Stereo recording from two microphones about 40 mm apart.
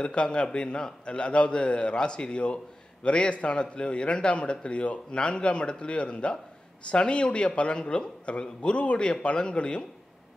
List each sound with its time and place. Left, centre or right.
0.0 s a man's voice: left